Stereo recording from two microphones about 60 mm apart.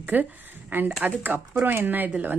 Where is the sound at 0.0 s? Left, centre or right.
Right.